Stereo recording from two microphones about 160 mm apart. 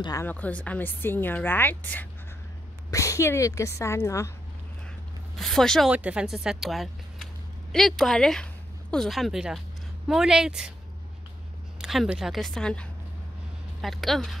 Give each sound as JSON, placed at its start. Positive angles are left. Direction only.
{"t": 0.0, "sound": "speech", "side_deg": 20}
{"t": 0.3, "sound": "speech", "side_deg": 10}
{"t": 5.3, "sound": "speech", "side_deg": 0}
{"t": 11.8, "sound": "speech", "side_deg": -5}